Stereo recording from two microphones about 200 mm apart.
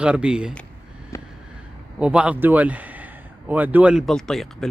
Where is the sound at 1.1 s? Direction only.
15° left (ahead or behind).